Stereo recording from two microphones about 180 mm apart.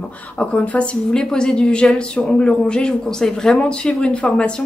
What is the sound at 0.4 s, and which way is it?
Speech, 5° left (ahead or behind).